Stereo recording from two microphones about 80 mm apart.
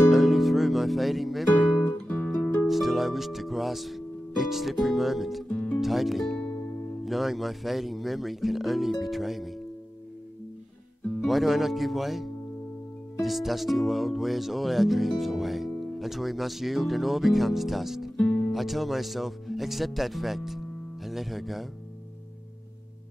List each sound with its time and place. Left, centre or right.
0.1 s music: centre
2.0 s music: centre
2.6 s speech: centre
5.5 s speech: centre
5.8 s speech: centre
11.2 s speech: centre
18.1 s music: centre
18.5 s speech: centre